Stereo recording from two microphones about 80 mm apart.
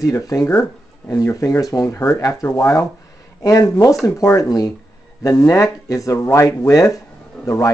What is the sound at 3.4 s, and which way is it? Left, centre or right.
Speech, left.